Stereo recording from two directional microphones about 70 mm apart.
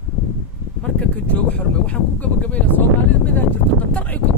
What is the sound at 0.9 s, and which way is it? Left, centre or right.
Speech, left.